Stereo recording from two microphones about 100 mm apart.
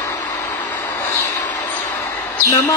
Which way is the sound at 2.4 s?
35° left (ahead or behind).